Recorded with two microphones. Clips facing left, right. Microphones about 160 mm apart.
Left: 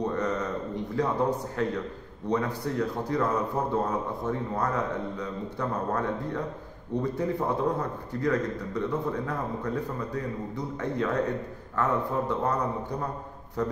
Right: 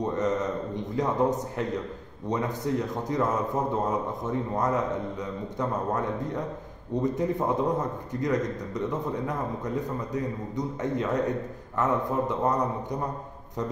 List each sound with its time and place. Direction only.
0.0 s a sound: 20° right (ahead or behind)
0.9 s a man's voice: 20° right (ahead or behind)
13.6 s a man's voice: 20° right (ahead or behind)